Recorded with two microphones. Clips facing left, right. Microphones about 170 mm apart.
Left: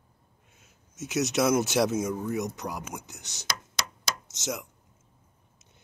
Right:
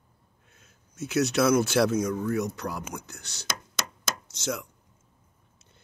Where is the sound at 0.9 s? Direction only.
20° left (ahead or behind).